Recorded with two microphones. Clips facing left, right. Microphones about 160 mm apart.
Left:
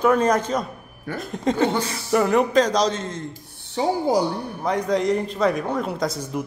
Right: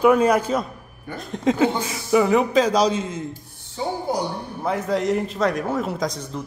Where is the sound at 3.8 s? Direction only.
90° left.